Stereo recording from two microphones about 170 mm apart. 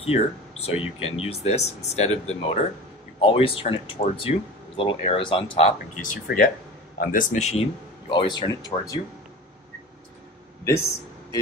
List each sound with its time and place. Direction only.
0.0 s speech: 35° left (ahead or behind)
6.2 s speech: 60° left (ahead or behind); by 7.6 s 40° left (ahead or behind)
8.1 s speech: 25° left (ahead or behind)